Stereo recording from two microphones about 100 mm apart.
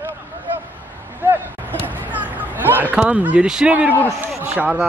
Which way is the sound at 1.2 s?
20° right (ahead or behind).